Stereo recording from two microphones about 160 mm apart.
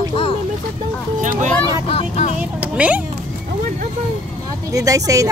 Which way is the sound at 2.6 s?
10° right (ahead or behind).